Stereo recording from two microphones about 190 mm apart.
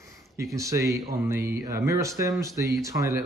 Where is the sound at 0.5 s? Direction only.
15° right (ahead or behind).